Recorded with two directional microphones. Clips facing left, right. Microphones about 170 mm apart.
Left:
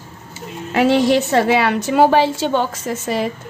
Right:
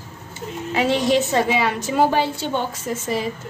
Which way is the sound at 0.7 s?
60° left (ahead or behind).